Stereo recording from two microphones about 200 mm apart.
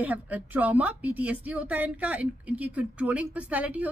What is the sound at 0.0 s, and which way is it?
Speech, 10° right (ahead or behind).